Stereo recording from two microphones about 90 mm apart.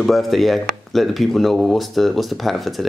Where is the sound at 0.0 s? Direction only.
Centre (ahead or behind).